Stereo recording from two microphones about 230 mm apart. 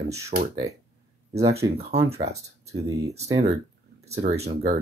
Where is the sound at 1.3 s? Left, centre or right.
Right.